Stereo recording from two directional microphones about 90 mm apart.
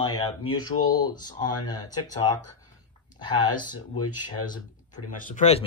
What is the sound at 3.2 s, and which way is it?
Speech, 55° left (ahead or behind).